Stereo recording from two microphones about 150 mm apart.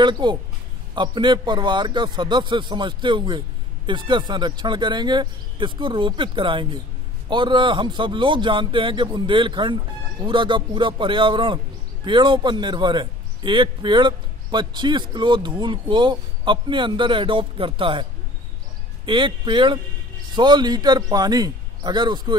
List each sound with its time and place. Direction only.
0.0 s a man's voice: 30° right (ahead or behind)
19.0 s a man's voice: 35° right (ahead or behind)